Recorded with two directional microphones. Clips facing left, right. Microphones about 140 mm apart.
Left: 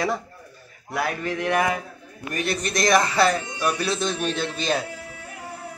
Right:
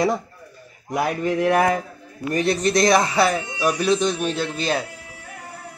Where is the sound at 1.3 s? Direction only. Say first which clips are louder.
Right 5 dB; 35° right (ahead or behind).